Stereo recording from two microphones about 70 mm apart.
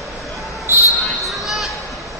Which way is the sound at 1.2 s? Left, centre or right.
Centre.